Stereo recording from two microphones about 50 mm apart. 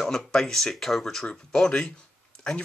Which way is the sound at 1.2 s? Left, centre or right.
Centre.